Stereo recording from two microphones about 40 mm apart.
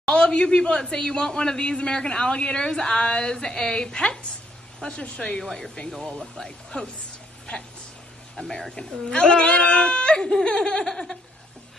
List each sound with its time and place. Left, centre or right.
0.0 s speech: left
5.4 s speech: centre
8.4 s speech: centre
8.7 s speech: left